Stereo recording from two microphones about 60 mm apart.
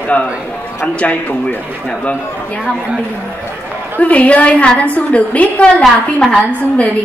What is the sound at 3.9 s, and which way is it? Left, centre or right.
A woman's voice, left.